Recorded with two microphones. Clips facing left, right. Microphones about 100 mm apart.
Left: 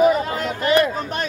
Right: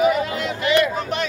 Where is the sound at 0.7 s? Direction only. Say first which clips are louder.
Left 1 dB; 45° left (ahead or behind).